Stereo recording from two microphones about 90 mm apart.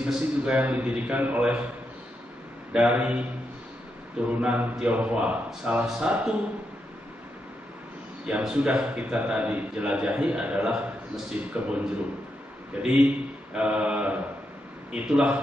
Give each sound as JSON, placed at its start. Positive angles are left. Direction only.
{"t": 0.0, "sound": "a man's voice", "side_deg": -10}
{"t": 2.7, "sound": "a man's voice", "side_deg": -15}
{"t": 4.3, "sound": "a man's voice", "side_deg": -15}
{"t": 8.3, "sound": "a man's voice", "side_deg": -15}
{"t": 12.8, "sound": "a man's voice", "side_deg": -15}